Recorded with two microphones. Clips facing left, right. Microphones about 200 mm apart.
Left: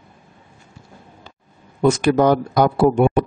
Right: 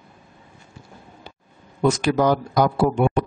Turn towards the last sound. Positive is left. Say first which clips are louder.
# left 5 dB
turn(degrees=45)  # may be behind; listen again after turning